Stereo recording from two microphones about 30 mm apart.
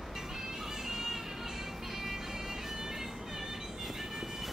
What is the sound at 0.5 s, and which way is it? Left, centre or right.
Music, centre.